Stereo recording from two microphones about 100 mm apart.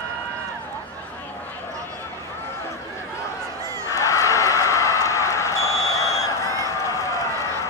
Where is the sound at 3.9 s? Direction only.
30° left (ahead or behind).